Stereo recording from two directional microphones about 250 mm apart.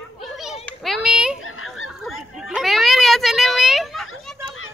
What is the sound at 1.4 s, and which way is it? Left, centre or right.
Goose, left.